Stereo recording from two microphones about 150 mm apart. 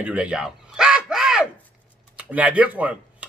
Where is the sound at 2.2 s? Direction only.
10° right (ahead or behind).